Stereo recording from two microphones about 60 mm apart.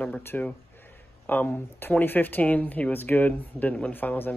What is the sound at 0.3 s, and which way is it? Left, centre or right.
Speech, left.